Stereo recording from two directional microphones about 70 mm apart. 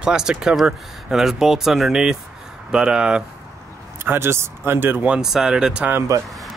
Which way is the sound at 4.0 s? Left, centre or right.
Right.